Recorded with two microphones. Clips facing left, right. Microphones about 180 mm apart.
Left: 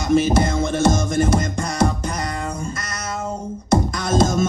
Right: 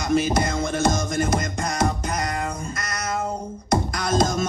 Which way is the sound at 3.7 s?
25° left (ahead or behind).